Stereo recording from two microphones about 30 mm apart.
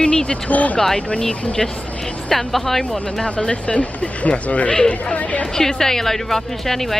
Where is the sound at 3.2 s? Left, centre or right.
Left.